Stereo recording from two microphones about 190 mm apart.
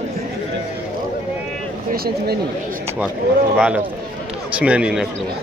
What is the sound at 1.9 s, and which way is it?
Speech, 55° right (ahead or behind).